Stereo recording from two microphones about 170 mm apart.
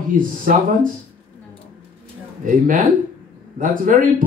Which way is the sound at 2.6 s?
50° right (ahead or behind).